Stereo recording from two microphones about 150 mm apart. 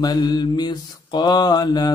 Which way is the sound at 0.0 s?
25° left (ahead or behind).